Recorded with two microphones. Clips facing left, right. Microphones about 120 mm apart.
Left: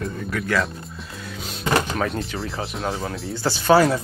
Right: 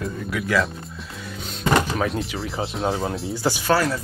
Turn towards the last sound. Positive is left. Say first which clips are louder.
# left 5 dB
turn(degrees=25)  # may be behind; listen again after turning